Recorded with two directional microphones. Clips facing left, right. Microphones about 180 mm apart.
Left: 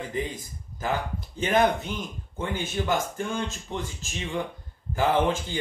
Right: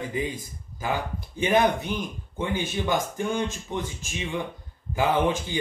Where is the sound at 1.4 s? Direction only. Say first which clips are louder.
Right 1 dB; 15° right (ahead or behind).